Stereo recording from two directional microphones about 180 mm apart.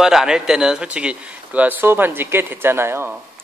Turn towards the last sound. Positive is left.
turn(degrees=-15)  # may be behind; listen again after turning